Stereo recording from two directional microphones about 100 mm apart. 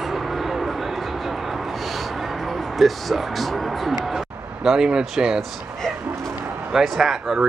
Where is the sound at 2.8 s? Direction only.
Centre (ahead or behind).